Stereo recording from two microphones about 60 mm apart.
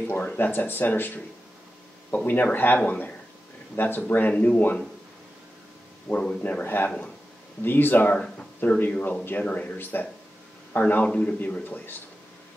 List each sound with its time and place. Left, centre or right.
0.2 s speech: left
0.5 s speech: left
4.3 s speech: left
6.1 s a man's voice: left
6.4 s speech: left
9.8 s a man's voice: left